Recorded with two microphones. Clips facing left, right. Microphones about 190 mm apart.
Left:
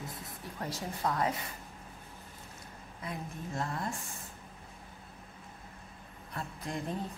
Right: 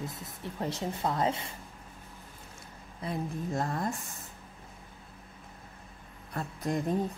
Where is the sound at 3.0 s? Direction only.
35° right (ahead or behind).